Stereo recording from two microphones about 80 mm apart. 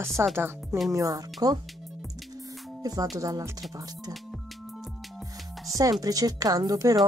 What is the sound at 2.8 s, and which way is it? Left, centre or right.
Speech, right.